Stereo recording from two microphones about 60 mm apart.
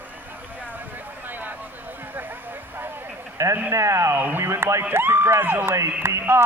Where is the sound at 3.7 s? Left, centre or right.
Right.